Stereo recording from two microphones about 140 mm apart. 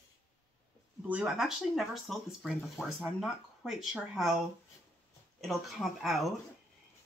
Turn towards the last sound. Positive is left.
turn(degrees=0)  # may be behind; listen again after turning